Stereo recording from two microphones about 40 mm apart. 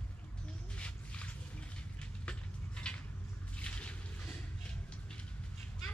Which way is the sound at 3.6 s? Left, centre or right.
Left.